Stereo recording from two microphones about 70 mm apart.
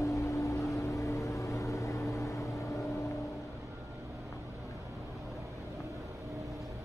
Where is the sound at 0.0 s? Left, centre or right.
Left.